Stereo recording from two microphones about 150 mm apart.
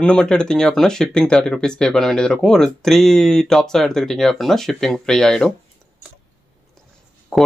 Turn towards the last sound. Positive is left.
turn(degrees=0)  # may be behind; listen again after turning